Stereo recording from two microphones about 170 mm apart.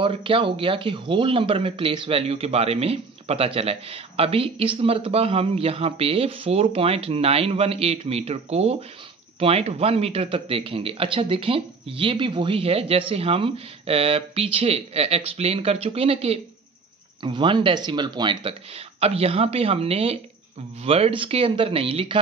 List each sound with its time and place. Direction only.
0.0 s speech: 30° right (ahead or behind)